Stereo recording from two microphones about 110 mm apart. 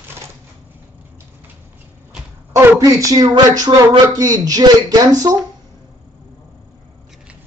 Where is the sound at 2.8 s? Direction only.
30° right (ahead or behind).